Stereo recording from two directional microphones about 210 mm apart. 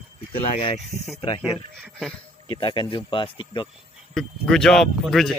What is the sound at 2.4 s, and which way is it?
Speech, 20° left (ahead or behind).